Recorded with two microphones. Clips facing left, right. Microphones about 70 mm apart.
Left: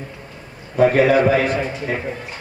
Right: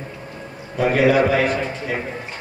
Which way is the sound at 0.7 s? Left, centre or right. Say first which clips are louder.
Left 2 dB; left.